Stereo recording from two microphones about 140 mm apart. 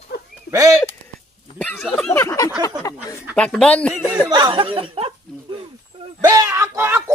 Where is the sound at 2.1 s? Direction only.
20° left (ahead or behind).